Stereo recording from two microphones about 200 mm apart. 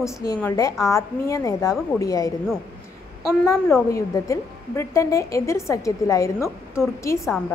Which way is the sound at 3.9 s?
15° left (ahead or behind).